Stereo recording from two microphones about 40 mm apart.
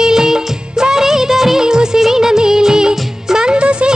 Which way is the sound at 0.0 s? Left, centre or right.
Centre.